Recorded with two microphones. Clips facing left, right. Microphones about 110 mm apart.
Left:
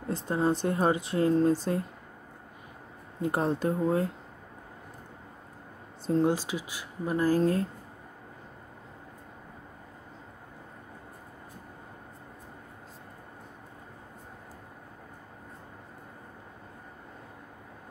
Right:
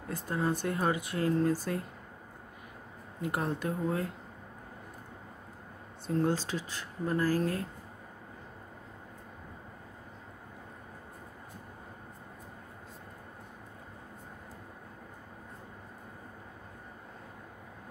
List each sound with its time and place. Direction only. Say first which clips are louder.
0.1 s speech: left 5 dB; 25° left (ahead or behind)
3.2 s speech: left 5 dB; 30° left (ahead or behind)
6.2 s speech: left 3 dB; 10° left (ahead or behind)